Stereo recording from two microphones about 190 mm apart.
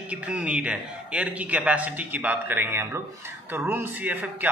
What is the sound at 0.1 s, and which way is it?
A man's voice, 5° right (ahead or behind).